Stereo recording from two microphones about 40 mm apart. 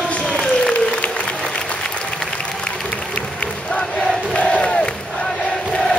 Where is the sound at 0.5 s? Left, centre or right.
Left.